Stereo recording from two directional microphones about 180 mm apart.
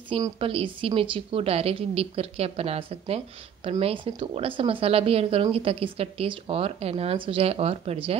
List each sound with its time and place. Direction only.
0.4 s speech: 30° right (ahead or behind)